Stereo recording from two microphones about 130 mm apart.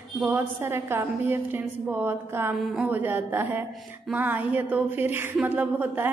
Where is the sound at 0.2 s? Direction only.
15° right (ahead or behind).